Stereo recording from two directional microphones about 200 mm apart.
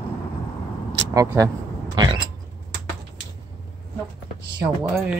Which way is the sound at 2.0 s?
20° right (ahead or behind).